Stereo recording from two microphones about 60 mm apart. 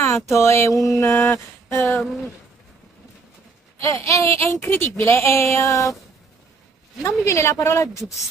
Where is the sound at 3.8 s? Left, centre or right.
Left.